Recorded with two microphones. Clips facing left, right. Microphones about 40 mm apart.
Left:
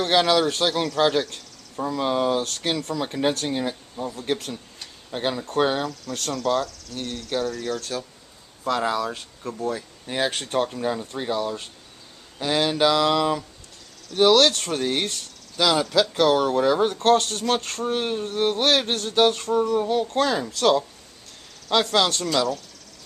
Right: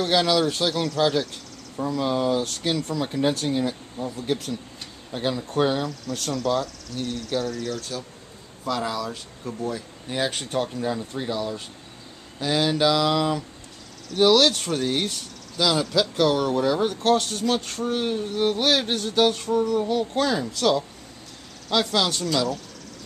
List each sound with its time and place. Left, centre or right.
0.0 s speech: centre
3.0 s speech: centre
5.1 s speech: centre
5.9 s speech: centre
6.4 s speech: centre
8.6 s speech: left
9.4 s speech: centre
17.8 s speech: centre
21.9 s speech: centre